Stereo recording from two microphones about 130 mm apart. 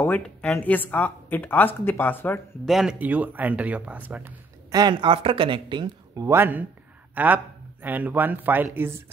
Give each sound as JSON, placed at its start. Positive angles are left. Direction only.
{"t": 0.0, "sound": "speech", "side_deg": 10}
{"t": 2.6, "sound": "speech", "side_deg": -5}
{"t": 4.6, "sound": "speech", "side_deg": -30}
{"t": 5.1, "sound": "speech", "side_deg": -45}
{"t": 6.2, "sound": "a man's voice", "side_deg": -20}